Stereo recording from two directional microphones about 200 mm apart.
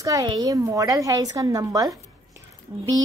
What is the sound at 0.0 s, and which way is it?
A woman's voice, 15° right (ahead or behind).